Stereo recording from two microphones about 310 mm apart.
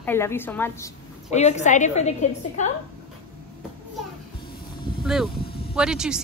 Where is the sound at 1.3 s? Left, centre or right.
Left.